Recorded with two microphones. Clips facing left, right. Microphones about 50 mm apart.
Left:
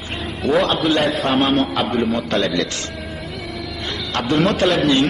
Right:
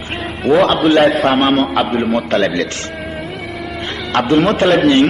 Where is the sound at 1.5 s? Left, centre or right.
Right.